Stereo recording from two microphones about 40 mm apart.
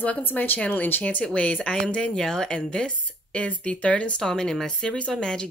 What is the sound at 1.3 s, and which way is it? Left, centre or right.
Speech, left.